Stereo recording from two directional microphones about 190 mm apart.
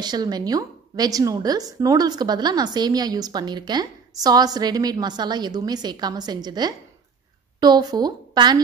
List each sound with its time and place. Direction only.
0.0 s a woman's voice: 20° right (ahead or behind)